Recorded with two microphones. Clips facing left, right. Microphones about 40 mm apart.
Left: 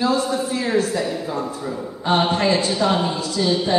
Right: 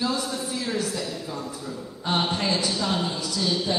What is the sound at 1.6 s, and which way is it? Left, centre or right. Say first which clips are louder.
Speech: left 7 dB; left.